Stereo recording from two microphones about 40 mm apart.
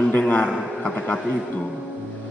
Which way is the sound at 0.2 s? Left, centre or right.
Left.